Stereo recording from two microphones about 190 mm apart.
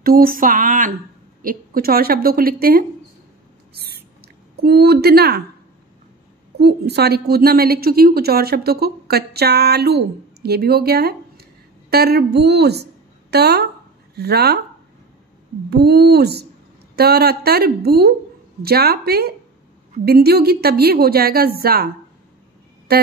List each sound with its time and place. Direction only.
0.0 s a woman's voice: 50° right (ahead or behind)
3.7 s owl: 55° right (ahead or behind)
4.6 s a woman's voice: 55° right (ahead or behind)
6.6 s a woman's voice: 60° right (ahead or behind)
15.7 s a woman's voice: 60° right (ahead or behind)
22.9 s a sound: 55° right (ahead or behind)